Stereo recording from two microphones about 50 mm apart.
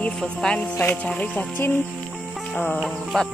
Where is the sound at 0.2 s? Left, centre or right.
Centre.